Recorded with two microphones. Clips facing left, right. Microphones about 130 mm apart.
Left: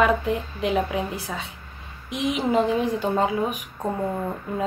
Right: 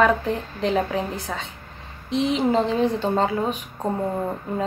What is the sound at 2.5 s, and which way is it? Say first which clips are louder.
Speech: left 2 dB; 30° right (ahead or behind).